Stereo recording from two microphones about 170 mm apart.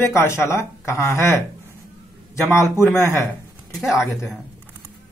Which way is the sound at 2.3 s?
15° left (ahead or behind).